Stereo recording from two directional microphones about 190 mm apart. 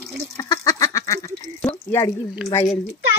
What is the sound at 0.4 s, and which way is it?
Goose, 20° left (ahead or behind).